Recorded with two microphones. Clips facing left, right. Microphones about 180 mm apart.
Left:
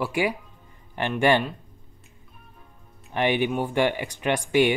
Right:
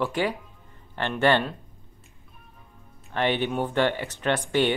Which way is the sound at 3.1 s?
15° left (ahead or behind).